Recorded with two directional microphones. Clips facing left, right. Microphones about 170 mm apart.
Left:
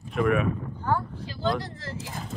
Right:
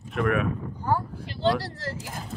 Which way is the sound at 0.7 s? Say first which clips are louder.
Right 3 dB; 10° right (ahead or behind).